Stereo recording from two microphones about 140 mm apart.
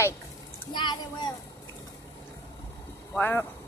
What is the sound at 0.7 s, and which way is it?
Speech, 30° left (ahead or behind).